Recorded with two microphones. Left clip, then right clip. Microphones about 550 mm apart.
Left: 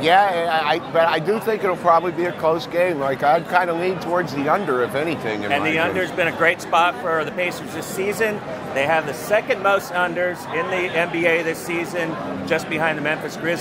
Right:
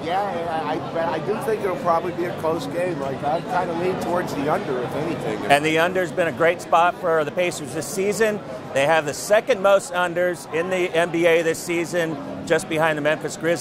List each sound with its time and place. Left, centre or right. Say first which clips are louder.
0.0 s a man's voice: left 8 dB; left
5.5 s speech: right 3 dB; right